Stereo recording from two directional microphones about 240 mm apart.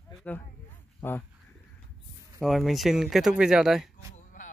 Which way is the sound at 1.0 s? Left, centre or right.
Centre.